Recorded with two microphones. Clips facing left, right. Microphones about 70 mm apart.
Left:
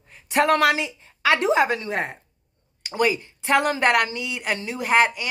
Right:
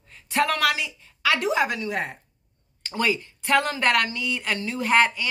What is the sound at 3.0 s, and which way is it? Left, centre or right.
Speech, centre.